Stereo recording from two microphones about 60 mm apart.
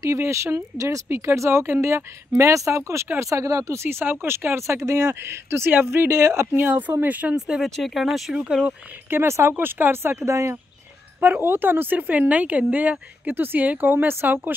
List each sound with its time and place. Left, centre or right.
0.0 s speech: right
3.8 s speech: right
4.6 s speech: right
6.0 s speech: right
6.5 s speech: right
7.3 s speech: centre
9.1 s speech: right
10.2 s speech: right
11.1 s speech: right